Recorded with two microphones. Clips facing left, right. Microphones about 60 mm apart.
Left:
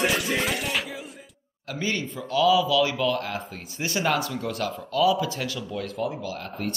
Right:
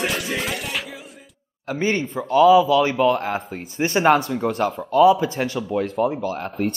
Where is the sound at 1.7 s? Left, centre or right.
Right.